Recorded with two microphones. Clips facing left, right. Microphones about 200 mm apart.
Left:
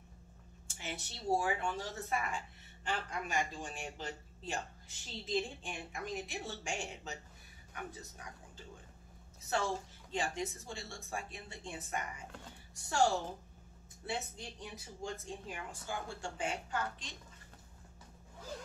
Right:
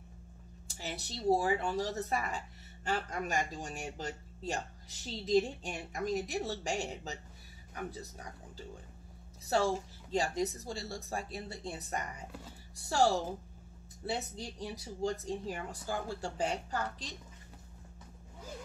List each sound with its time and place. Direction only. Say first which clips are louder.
0.7 s speech: right 3 dB; 35° right (ahead or behind)
14.0 s speech: right 4 dB; 35° right (ahead or behind)